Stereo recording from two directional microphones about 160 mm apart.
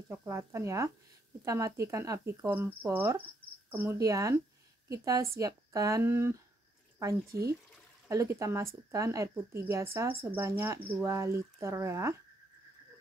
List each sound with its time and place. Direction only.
0.1 s speech: 15° right (ahead or behind)